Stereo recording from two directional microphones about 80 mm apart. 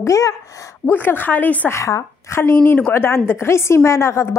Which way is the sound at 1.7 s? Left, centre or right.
Left.